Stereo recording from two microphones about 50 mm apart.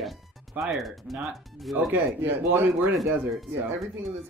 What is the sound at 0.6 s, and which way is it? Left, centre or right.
Speech, centre.